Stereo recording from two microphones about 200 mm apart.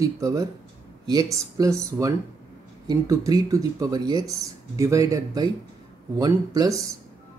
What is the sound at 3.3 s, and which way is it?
Speech, 15° right (ahead or behind).